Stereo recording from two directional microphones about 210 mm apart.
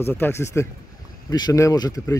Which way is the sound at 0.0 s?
10° left (ahead or behind).